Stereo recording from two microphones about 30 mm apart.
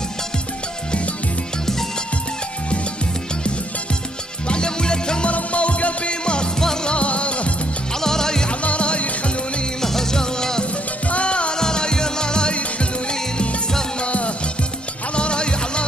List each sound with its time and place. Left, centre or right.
4.5 s music: left
5.2 s music: left
6.2 s music: left
6.6 s music: centre
6.9 s music: left
8.0 s music: centre
8.5 s music: left
9.8 s music: centre
11.1 s music: left
11.5 s music: left
14.0 s music: left
15.1 s music: left